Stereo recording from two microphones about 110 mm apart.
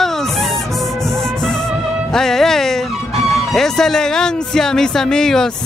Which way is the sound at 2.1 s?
5° left (ahead or behind).